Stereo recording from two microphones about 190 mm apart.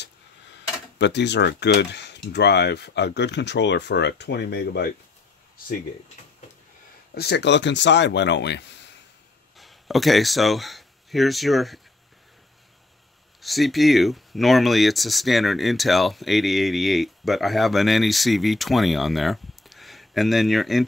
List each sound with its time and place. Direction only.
0.9 s speech: 65° left (ahead or behind)
7.2 s speech: 60° left (ahead or behind)
9.6 s speech: centre (ahead or behind)
13.4 s speech: centre (ahead or behind)